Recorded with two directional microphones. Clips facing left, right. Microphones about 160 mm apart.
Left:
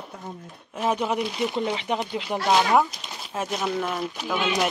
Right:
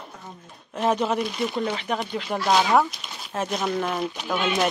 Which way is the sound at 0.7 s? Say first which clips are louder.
Right 2 dB; 10° left (ahead or behind).